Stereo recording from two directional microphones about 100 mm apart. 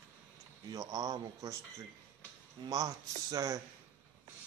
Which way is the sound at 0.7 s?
40° right (ahead or behind).